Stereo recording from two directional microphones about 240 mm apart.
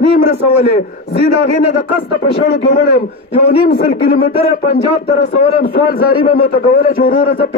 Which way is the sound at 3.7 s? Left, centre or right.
Left.